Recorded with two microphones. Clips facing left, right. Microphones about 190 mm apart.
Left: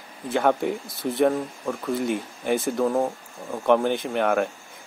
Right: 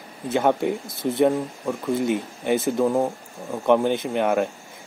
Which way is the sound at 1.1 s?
15° right (ahead or behind).